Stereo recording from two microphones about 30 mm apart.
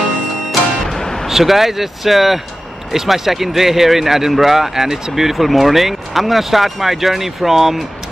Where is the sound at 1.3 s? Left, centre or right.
Centre.